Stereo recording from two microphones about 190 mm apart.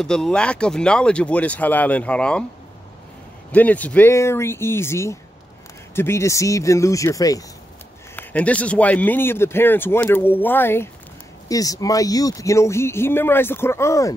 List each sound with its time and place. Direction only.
0.0 s speech: 5° left (ahead or behind)
3.5 s speech: 10° left (ahead or behind)
8.2 s speech: 10° left (ahead or behind)